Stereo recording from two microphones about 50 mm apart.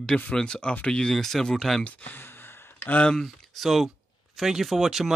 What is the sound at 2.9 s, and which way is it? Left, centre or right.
Speech, centre.